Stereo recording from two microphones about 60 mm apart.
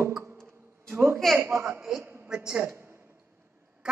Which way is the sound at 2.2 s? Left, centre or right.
Centre.